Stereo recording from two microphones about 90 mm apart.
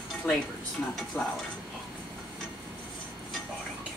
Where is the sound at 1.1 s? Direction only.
25° left (ahead or behind).